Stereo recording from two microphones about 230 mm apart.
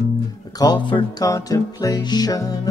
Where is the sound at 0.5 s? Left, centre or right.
Centre.